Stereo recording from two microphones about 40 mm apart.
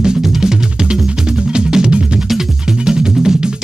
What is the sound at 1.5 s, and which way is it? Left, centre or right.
Music, right.